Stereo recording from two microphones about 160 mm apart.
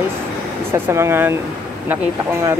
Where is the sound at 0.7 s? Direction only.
15° right (ahead or behind).